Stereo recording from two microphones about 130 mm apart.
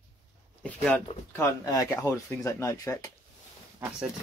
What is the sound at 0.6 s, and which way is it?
Speech, 10° left (ahead or behind).